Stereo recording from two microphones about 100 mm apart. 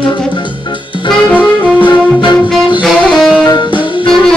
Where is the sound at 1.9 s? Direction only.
50° left (ahead or behind).